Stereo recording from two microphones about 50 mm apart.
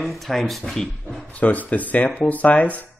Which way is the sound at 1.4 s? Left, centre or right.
Left.